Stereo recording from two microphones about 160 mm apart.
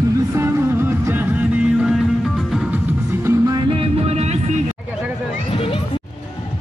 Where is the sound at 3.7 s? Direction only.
35° right (ahead or behind).